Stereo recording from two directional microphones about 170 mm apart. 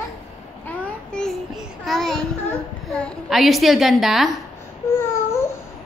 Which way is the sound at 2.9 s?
5° left (ahead or behind).